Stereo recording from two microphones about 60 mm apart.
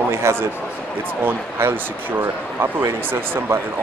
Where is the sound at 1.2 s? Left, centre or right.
Right.